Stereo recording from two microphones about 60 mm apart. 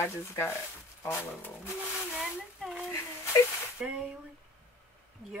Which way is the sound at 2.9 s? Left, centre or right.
Left.